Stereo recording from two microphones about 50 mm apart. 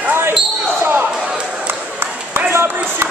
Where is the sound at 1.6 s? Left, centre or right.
Right.